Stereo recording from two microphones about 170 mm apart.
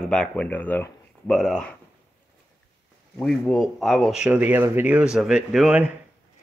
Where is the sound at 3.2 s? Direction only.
Centre (ahead or behind).